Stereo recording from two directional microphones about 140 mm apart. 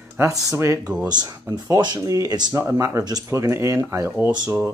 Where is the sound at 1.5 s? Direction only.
30° right (ahead or behind).